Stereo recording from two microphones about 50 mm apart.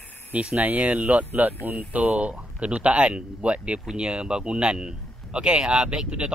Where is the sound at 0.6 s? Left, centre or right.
Right.